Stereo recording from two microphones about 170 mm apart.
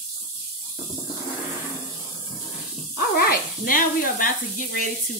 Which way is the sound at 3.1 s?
60° left (ahead or behind).